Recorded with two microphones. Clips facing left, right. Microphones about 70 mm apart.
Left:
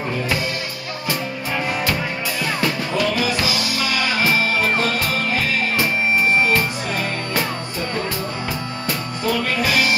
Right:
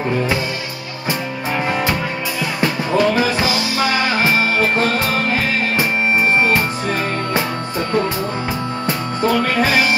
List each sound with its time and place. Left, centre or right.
2.9 s music: right
8.8 s music: right